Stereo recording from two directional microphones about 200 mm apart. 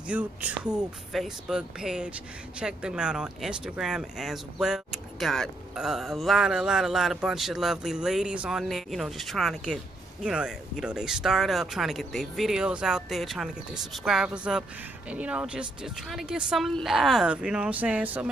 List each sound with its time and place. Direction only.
0.1 s speech: 10° right (ahead or behind)